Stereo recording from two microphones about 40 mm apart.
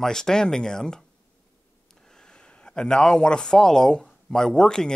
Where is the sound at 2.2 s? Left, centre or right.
Left.